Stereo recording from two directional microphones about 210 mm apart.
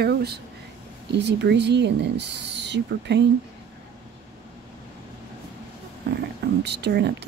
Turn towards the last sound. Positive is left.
turn(degrees=-55)  # may be behind; listen again after turning